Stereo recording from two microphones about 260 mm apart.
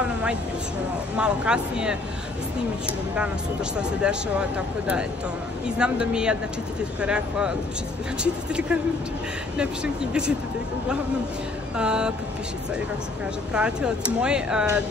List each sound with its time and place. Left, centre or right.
1.1 s speech: centre
3.7 s speech: centre
11.7 s speech: centre
13.5 s speech: centre